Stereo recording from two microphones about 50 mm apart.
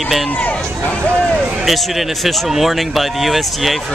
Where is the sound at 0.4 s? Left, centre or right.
Left.